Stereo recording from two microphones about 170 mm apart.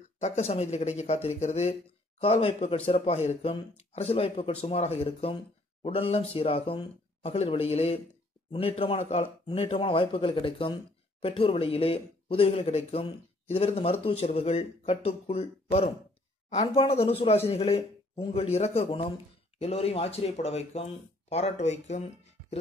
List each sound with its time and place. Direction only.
0.2 s speech: 40° left (ahead or behind)